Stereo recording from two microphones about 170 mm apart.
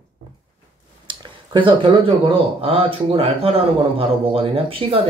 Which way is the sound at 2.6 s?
35° right (ahead or behind).